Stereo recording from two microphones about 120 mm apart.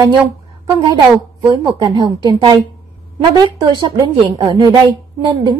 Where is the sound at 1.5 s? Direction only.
45° right (ahead or behind).